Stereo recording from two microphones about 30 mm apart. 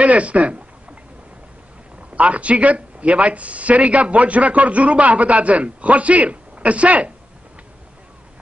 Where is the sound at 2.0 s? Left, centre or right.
Right.